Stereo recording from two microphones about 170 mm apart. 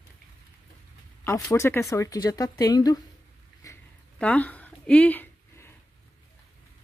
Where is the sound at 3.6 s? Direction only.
10° left (ahead or behind).